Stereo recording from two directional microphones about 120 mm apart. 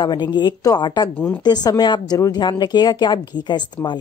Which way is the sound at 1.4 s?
35° left (ahead or behind).